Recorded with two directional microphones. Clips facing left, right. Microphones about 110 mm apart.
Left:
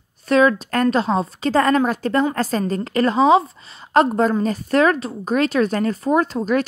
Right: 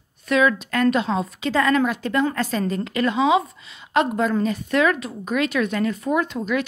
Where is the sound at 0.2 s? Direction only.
35° left (ahead or behind).